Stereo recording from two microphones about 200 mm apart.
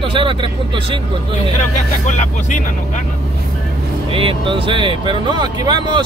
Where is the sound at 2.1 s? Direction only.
35° left (ahead or behind).